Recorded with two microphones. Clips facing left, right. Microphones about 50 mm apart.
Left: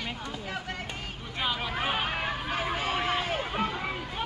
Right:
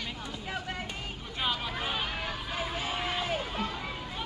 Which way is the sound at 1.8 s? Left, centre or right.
Left.